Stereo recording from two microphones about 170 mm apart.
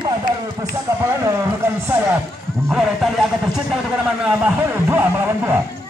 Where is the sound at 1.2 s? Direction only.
15° right (ahead or behind).